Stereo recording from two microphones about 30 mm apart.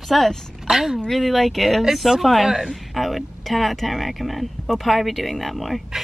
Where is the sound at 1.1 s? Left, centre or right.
Centre.